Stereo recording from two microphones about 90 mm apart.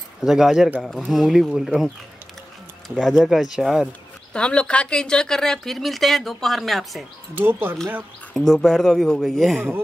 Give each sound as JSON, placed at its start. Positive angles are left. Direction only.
{"t": 0.2, "sound": "speech", "side_deg": -5}
{"t": 2.9, "sound": "speech", "side_deg": 0}
{"t": 4.3, "sound": "speech", "side_deg": 10}
{"t": 7.3, "sound": "speech", "side_deg": -25}
{"t": 8.3, "sound": "speech", "side_deg": 5}